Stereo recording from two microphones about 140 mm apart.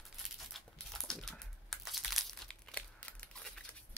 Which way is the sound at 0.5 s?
Centre (ahead or behind).